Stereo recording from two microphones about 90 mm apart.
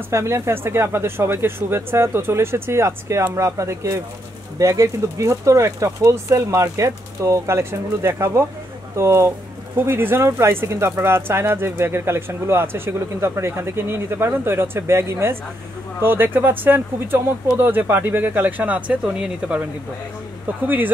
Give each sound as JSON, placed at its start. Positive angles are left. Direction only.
{"t": 0.1, "sound": "speech", "side_deg": -30}
{"t": 20.6, "sound": "speech", "side_deg": -20}